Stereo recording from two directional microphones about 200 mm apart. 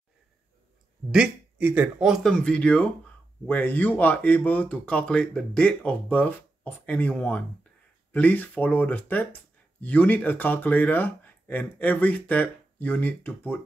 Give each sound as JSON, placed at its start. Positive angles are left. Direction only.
{"t": 1.1, "sound": "speech", "side_deg": -5}